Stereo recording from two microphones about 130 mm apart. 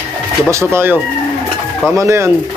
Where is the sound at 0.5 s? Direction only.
20° right (ahead or behind).